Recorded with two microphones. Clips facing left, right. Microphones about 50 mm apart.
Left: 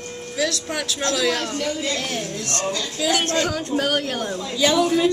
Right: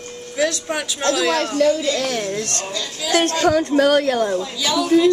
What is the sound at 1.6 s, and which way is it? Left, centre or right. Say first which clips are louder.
Speech: right 8 dB; right.